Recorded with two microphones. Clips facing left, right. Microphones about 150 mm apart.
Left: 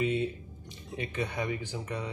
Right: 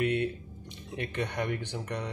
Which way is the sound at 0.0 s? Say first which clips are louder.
Right 1 dB; 65° right (ahead or behind).